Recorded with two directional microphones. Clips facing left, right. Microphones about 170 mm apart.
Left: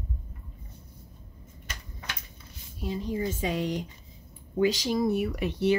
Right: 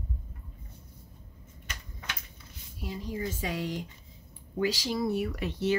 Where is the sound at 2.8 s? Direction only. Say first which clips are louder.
Left 5 dB; 25° left (ahead or behind).